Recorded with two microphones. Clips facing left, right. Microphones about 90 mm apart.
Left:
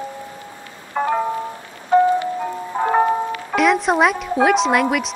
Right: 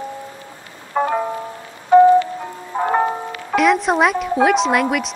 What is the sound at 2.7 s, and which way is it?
Music, 15° right (ahead or behind).